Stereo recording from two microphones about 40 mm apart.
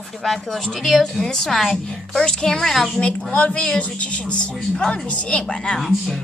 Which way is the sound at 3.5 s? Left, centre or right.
Left.